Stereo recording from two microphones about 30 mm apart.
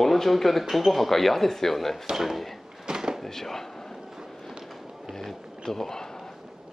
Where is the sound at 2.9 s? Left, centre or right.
Centre.